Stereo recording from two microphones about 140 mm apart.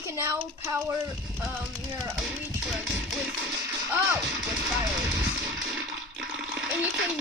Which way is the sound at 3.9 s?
10° right (ahead or behind).